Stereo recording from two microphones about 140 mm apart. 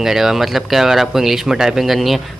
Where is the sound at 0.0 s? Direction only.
5° right (ahead or behind).